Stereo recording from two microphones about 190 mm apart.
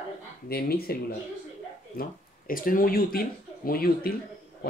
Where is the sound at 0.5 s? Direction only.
55° left (ahead or behind).